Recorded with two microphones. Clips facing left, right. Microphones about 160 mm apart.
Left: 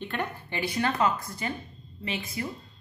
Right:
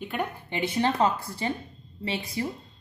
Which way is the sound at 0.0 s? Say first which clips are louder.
Right 2 dB; 10° right (ahead or behind).